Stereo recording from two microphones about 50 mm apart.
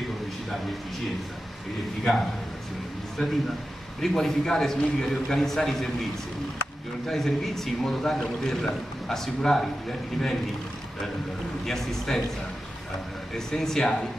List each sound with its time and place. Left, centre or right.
3.2 s a man's voice: left
4.0 s a man's voice: centre
7.1 s a man's voice: centre
11.6 s a man's voice: centre
13.3 s a man's voice: centre